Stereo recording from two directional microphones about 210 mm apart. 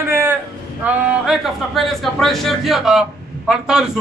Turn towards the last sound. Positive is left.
turn(degrees=-5)  # may be behind; listen again after turning